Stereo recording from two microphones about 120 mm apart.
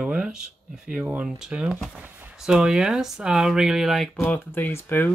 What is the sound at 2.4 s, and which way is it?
Speech, 5° right (ahead or behind).